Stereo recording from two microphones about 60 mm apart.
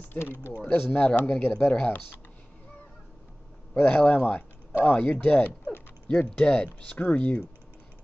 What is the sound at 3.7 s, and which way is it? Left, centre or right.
Speech, centre.